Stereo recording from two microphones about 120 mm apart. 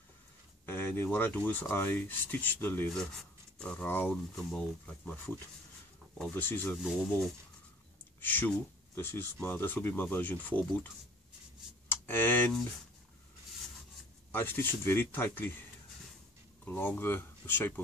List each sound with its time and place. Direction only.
0.7 s speech: 20° left (ahead or behind)
2.9 s speech: 5° left (ahead or behind)
6.3 s speech: 15° left (ahead or behind)
8.2 s speech: 15° left (ahead or behind)
11.9 s speech: 15° left (ahead or behind)
14.3 s speech: 15° left (ahead or behind)
16.6 s speech: 15° left (ahead or behind)